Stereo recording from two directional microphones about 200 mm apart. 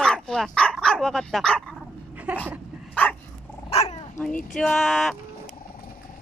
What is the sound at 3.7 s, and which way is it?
Dog, 30° left (ahead or behind).